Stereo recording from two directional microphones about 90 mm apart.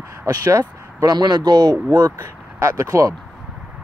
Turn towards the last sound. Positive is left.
turn(degrees=-35)  # may be behind; listen again after turning